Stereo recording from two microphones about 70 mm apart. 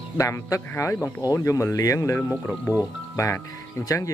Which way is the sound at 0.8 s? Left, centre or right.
Left.